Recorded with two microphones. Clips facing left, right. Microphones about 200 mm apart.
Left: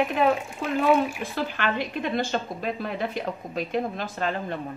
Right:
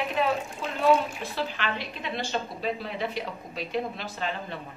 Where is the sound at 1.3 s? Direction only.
50° left (ahead or behind).